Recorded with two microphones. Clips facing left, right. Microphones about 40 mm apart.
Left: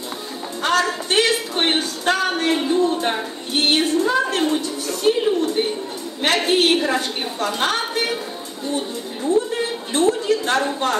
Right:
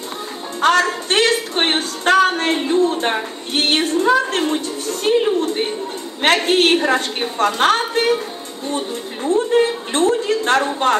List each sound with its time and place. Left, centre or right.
0.6 s music: right
1.1 s a sound: right
3.5 s a woman's voice: right